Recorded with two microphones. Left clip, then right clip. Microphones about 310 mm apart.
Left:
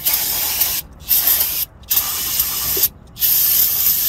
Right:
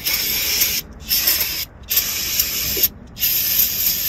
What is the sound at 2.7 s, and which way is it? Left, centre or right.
Spray, left.